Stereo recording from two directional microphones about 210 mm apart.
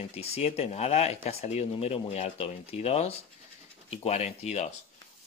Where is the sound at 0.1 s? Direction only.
30° left (ahead or behind).